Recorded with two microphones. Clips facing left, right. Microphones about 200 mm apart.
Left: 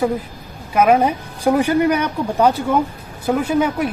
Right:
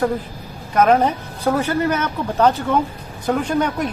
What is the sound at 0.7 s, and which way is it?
Speech, 10° left (ahead or behind).